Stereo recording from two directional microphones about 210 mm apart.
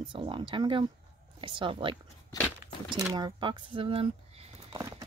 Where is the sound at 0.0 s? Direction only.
25° right (ahead or behind).